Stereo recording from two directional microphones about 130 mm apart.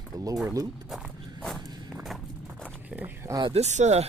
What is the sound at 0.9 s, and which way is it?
Walk, centre (ahead or behind).